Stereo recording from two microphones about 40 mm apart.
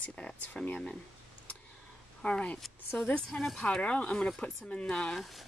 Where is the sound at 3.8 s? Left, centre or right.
Left.